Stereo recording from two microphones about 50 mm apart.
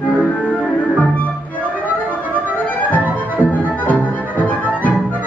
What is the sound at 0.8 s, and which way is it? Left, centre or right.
Music, left.